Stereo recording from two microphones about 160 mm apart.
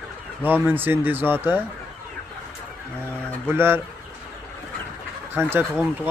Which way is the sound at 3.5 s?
15° right (ahead or behind).